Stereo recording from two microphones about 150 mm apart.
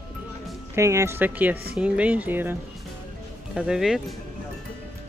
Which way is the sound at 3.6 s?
5° right (ahead or behind).